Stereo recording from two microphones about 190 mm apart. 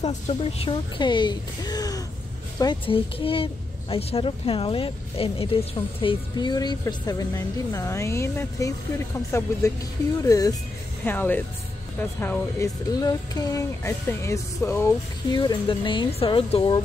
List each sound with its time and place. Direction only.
0.0 s speech: 30° left (ahead or behind)